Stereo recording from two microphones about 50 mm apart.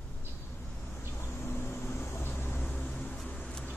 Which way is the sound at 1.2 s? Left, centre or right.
Left.